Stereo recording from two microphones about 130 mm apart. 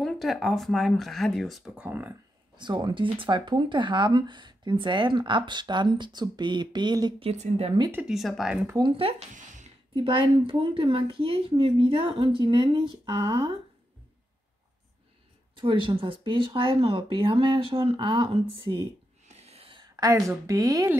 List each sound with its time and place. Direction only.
0.0 s speech: centre (ahead or behind)
1.8 s speech: 15° right (ahead or behind)
2.5 s speech: 35° right (ahead or behind)
7.2 s a woman's voice: 50° right (ahead or behind)
7.9 s speech: 5° right (ahead or behind)
8.7 s speech: 40° right (ahead or behind)
9.3 s a sound: 75° right (ahead or behind)
9.9 s speech: 45° right (ahead or behind)
15.5 s speech: 40° right (ahead or behind)
19.2 s a sound: 55° right (ahead or behind)
20.0 s speech: 25° right (ahead or behind)